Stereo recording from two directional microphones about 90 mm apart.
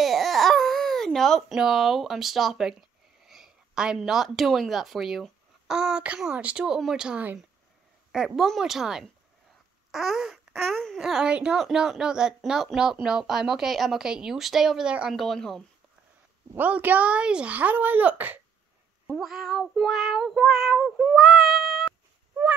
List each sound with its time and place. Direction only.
0.0 s baby cry: centre (ahead or behind)
1.6 s speech: 5° right (ahead or behind)
8.1 s meow: 5° right (ahead or behind)
9.8 s a sound: 5° right (ahead or behind)
11.0 s speech: 5° right (ahead or behind)
13.0 s meow: 5° right (ahead or behind)
16.5 s speech: 20° right (ahead or behind)
19.0 s meow: centre (ahead or behind)